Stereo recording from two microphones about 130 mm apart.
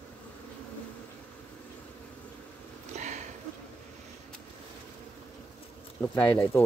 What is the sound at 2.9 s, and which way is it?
Sniff, 65° right (ahead or behind).